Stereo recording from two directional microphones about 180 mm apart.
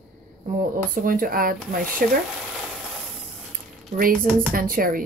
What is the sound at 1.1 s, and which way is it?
A woman's voice, 50° right (ahead or behind).